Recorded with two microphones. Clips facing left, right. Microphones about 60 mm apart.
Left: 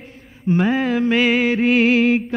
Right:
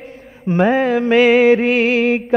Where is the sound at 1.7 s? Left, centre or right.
Right.